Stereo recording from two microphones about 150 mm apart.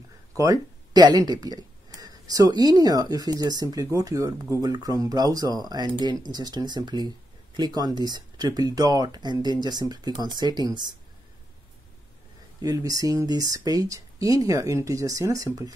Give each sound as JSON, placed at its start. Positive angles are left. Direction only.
{"t": 0.4, "sound": "speech", "side_deg": -25}
{"t": 12.6, "sound": "speech", "side_deg": -25}